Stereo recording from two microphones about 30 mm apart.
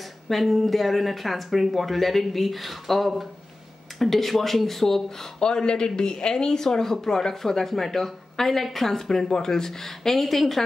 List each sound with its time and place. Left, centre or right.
0.0 s speech: centre
5.4 s speech: left; by 9.3 s centre
9.3 s speech: centre